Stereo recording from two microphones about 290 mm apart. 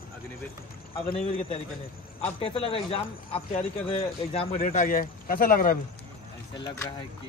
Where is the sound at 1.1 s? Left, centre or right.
Left.